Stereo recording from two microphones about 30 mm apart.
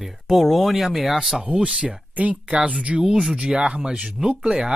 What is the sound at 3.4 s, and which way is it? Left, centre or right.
Speech, right.